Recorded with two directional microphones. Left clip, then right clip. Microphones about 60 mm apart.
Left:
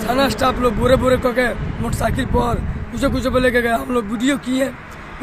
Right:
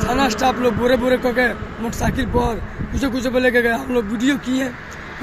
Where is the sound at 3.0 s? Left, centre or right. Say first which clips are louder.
Left 2 dB; left.